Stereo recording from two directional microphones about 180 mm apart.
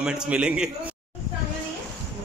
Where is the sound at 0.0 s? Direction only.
5° right (ahead or behind).